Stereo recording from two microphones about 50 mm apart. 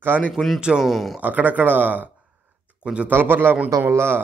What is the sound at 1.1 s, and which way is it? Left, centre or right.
Speech, right.